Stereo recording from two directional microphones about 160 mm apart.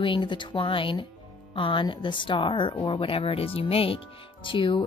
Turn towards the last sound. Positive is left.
turn(degrees=30)  # may be behind; listen again after turning